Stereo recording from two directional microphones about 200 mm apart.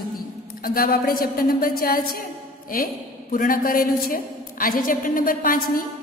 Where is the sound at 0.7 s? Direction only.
45° left (ahead or behind).